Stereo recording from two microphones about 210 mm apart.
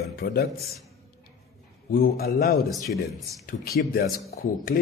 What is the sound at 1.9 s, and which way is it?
Speech, 45° left (ahead or behind).